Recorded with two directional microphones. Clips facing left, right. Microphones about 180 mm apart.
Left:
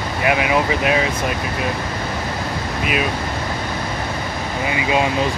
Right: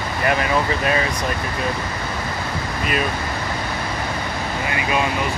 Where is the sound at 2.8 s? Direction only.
5° left (ahead or behind).